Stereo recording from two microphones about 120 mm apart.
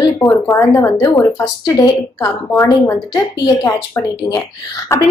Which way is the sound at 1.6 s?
30° left (ahead or behind).